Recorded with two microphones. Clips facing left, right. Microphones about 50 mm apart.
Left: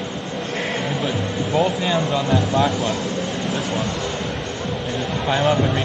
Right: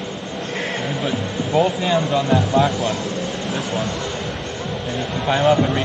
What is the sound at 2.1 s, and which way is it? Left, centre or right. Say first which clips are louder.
Speech: right 2 dB; centre.